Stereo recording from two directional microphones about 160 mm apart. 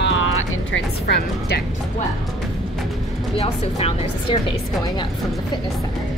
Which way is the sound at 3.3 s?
40° left (ahead or behind).